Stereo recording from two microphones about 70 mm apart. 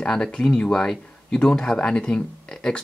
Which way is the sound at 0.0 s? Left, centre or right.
Centre.